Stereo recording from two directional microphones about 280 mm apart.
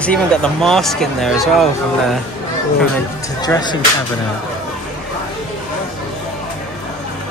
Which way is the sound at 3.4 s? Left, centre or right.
Centre.